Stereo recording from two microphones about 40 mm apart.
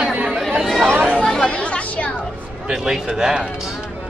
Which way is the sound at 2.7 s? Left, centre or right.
Centre.